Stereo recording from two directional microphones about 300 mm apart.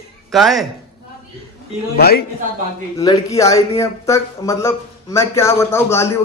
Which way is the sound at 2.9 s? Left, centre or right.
Centre.